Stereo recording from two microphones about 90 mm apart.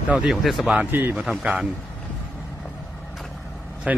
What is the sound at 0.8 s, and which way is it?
Speech, 20° right (ahead or behind).